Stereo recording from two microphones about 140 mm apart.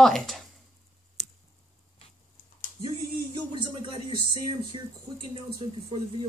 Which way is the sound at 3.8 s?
40° right (ahead or behind).